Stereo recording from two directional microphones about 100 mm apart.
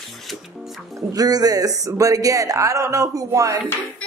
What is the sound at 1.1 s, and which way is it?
Speech, 40° right (ahead or behind).